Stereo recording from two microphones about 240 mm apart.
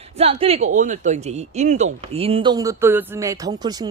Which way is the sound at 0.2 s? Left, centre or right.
Right.